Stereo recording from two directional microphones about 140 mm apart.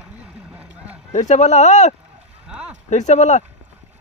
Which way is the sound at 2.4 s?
10° right (ahead or behind).